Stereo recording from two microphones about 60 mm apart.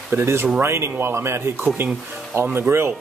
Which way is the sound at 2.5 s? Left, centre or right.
Right.